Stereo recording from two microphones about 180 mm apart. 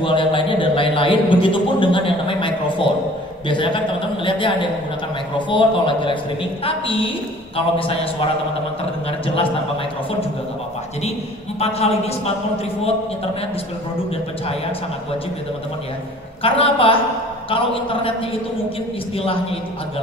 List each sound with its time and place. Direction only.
0.0 s a sound: 30° left (ahead or behind)
5.5 s a man's voice: 30° left (ahead or behind)
9.2 s a man's voice: 30° left (ahead or behind)
11.6 s a man's voice: 35° left (ahead or behind)
16.4 s a man's voice: 30° left (ahead or behind)